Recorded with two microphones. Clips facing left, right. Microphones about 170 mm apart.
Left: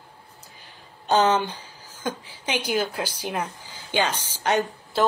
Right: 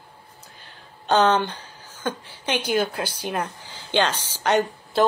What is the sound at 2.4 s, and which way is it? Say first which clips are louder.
A woman's voice: right 2 dB; 10° left (ahead or behind).